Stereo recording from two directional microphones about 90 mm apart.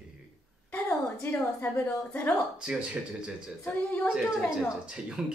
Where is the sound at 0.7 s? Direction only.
25° left (ahead or behind).